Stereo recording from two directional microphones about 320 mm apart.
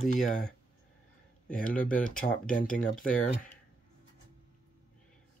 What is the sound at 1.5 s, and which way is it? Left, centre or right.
Speech, left.